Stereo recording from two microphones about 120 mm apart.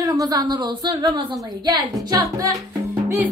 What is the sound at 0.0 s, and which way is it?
A woman's voice, 30° right (ahead or behind).